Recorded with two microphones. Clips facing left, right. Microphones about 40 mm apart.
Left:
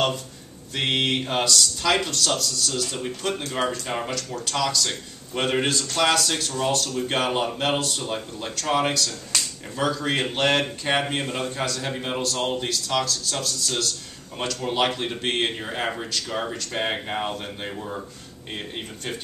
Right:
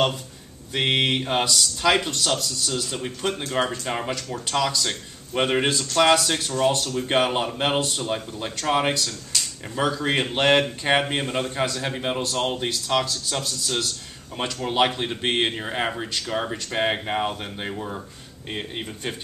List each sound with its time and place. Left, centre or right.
0.7 s a man's voice: centre